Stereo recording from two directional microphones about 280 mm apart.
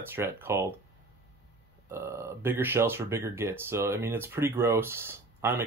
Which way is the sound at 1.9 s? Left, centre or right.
Centre.